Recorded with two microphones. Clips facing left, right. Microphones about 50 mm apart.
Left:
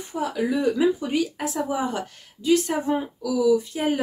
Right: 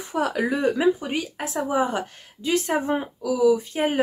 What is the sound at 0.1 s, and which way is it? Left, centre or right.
Speech, right.